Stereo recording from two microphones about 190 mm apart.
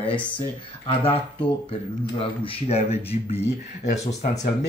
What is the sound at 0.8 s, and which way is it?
Speech, 30° left (ahead or behind).